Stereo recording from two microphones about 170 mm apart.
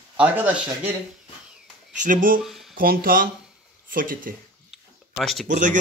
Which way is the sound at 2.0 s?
50° right (ahead or behind).